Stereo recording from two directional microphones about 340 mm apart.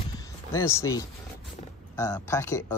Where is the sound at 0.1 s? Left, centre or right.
Centre.